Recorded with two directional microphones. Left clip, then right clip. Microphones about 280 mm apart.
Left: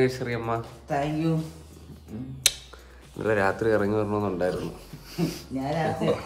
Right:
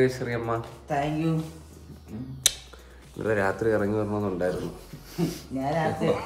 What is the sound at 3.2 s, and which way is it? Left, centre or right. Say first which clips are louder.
Speech: left 1 dB; centre.